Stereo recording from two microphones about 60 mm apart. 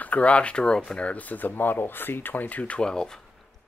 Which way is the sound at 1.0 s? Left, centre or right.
Left.